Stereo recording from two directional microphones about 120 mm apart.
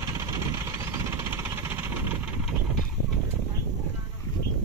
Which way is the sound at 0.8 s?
25° right (ahead or behind).